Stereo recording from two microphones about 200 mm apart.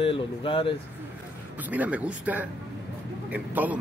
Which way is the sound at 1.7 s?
5° right (ahead or behind).